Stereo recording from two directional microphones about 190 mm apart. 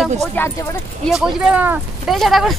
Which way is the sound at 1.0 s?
Centre (ahead or behind).